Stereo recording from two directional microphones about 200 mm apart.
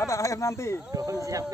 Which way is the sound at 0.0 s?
15° left (ahead or behind).